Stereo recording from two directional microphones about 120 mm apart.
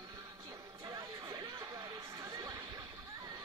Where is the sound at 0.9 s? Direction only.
35° right (ahead or behind).